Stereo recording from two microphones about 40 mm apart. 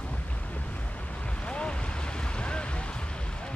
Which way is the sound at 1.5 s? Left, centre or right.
Left.